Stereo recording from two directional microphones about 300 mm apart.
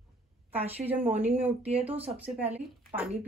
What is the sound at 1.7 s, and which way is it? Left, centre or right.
Speech, right.